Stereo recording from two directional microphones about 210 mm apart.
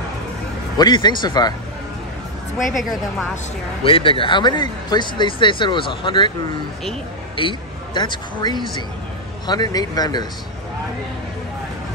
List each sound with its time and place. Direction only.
0.7 s speech: 20° left (ahead or behind)
2.7 s a woman's voice: centre (ahead or behind)
3.8 s speech: 25° left (ahead or behind)
7.3 s speech: 20° left (ahead or behind)